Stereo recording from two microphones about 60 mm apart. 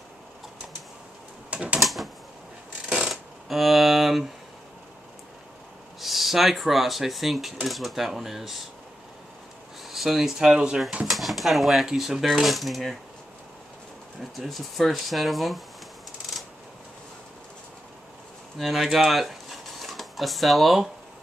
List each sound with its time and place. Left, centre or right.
1.5 s a sound: right
1.8 s typewriter: centre
3.1 s a sound: centre
5.9 s speech: centre
9.8 s speech: centre
11.1 s speech: centre
14.3 s speech: centre
18.6 s speech: centre